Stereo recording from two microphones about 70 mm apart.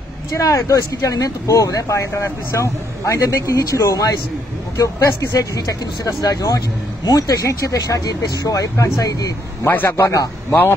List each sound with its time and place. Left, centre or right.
0.3 s speech: left
9.7 s a man's voice: left